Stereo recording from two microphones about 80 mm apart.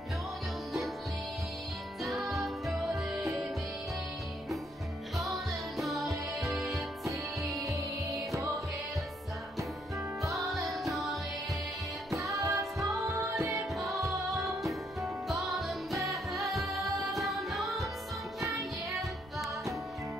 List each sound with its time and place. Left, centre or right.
2.0 s music: centre
5.1 s music: centre
10.5 s music: centre
12.2 s music: right
13.7 s music: centre
18.4 s music: right
18.9 s music: centre